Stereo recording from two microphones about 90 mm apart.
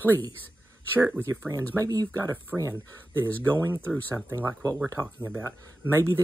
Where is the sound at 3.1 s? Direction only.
25° right (ahead or behind).